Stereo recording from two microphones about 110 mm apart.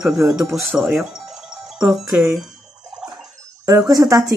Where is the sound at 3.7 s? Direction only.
30° right (ahead or behind).